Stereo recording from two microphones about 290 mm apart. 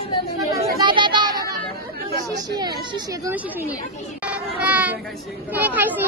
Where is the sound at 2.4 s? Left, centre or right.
Centre.